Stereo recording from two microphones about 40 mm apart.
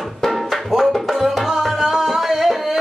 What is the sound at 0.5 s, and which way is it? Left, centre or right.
Music, centre.